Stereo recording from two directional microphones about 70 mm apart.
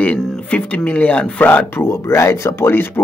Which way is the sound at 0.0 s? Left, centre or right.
Centre.